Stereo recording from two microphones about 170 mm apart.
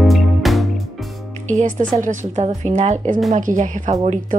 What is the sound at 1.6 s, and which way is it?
A woman's voice, 45° right (ahead or behind).